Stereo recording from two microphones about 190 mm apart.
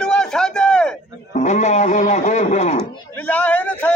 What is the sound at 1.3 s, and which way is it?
A man's voice, 35° left (ahead or behind).